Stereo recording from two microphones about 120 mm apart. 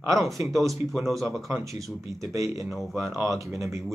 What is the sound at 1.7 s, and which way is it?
Speech, 25° right (ahead or behind).